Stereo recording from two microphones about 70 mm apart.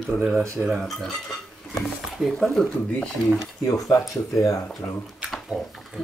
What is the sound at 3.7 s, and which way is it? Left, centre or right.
Speech, left.